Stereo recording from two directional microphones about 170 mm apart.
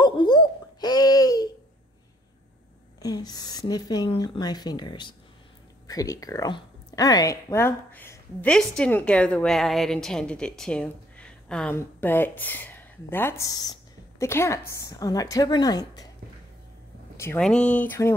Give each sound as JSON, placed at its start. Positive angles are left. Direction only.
{"t": 0.0, "sound": "a sound", "side_deg": 25}
{"t": 3.0, "sound": "a woman's voice", "side_deg": 20}
{"t": 17.4, "sound": "speech", "side_deg": 5}